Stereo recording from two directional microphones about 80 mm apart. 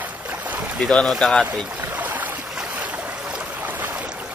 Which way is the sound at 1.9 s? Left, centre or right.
Right.